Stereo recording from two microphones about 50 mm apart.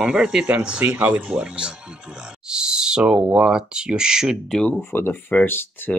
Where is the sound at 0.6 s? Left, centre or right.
Right.